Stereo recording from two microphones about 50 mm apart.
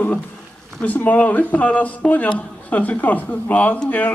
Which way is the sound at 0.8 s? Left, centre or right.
Left.